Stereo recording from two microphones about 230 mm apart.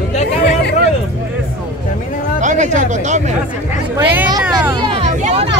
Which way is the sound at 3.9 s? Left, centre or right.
Centre.